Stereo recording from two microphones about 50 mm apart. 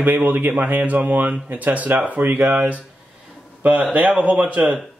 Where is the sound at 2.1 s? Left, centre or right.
Right.